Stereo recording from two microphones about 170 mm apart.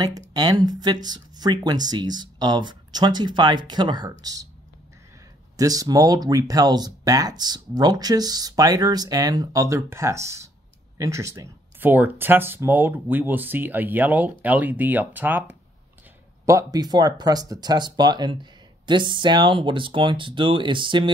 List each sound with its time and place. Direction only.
0.3 s speech: 25° right (ahead or behind)
5.6 s speech: 20° right (ahead or behind)